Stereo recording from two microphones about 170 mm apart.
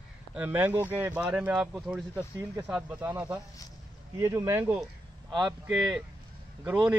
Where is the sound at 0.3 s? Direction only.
10° right (ahead or behind); by 5.9 s 25° right (ahead or behind).